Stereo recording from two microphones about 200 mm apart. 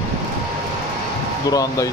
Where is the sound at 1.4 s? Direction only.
15° left (ahead or behind).